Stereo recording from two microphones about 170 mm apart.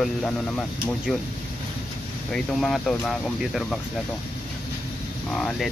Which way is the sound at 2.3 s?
5° left (ahead or behind).